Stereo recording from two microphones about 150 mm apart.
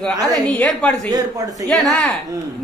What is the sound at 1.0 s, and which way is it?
Speech, 25° right (ahead or behind).